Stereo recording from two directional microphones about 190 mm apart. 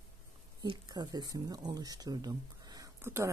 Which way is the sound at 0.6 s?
20° right (ahead or behind).